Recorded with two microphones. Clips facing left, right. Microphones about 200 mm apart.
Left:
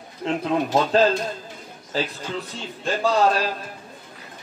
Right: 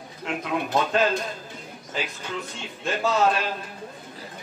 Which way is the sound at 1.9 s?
35° left (ahead or behind).